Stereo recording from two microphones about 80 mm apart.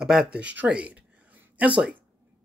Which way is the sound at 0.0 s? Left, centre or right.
Centre.